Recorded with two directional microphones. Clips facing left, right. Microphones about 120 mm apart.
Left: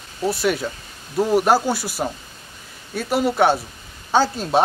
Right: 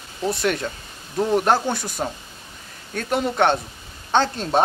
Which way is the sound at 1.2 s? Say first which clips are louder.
Left 2 dB; 5° left (ahead or behind).